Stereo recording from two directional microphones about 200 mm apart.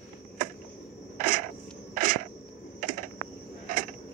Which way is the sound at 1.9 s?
45° right (ahead or behind).